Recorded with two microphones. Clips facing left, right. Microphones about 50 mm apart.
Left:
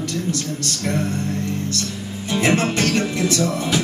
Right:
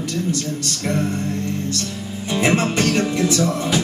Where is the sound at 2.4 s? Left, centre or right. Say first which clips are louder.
Right 1 dB; centre.